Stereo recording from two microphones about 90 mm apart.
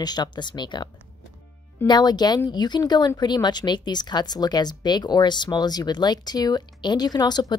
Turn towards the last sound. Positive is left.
turn(degrees=50)  # may be behind; listen again after turning